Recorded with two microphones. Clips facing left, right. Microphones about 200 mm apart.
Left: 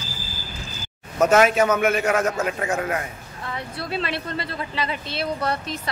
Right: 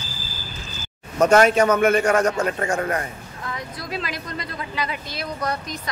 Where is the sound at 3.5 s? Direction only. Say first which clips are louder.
Left 3 dB; 30° left (ahead or behind).